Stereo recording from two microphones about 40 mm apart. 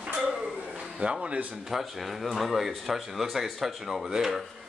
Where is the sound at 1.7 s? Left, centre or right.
Centre.